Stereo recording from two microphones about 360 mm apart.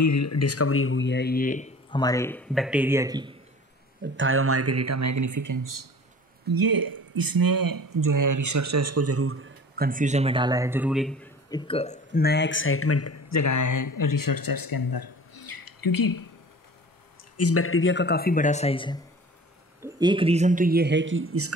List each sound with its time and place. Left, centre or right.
0.0 s speech: left; by 3.3 s centre
4.0 s speech: right
6.5 s speech: right
9.8 s a man's voice: right; by 16.3 s left
17.4 s speech: left; by 18.9 s centre
19.8 s speech: centre; by 21.5 s right